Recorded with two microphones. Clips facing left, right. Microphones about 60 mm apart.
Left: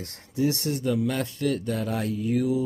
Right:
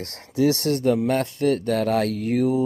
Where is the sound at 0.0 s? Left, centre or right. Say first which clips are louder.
Right 5 dB; right.